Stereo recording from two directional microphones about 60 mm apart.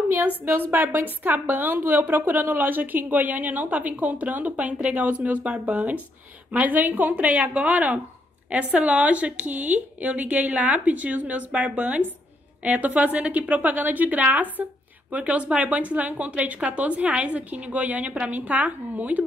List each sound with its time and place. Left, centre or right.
0.1 s a woman's voice: right